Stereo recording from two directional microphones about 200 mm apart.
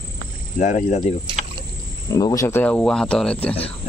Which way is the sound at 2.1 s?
20° left (ahead or behind).